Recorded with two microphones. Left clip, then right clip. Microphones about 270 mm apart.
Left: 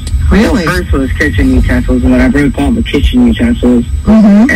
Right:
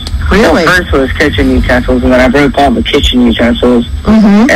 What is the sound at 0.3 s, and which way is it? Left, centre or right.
A man's voice, right.